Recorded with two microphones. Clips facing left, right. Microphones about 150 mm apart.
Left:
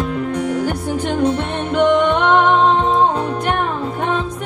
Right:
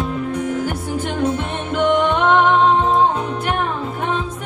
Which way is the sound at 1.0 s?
Centre (ahead or behind).